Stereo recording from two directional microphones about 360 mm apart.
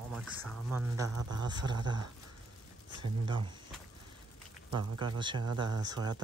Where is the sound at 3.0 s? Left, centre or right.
Centre.